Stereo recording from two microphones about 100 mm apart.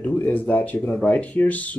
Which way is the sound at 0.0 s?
15° left (ahead or behind).